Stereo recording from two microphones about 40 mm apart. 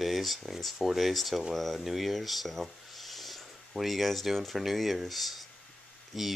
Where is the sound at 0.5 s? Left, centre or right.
Centre.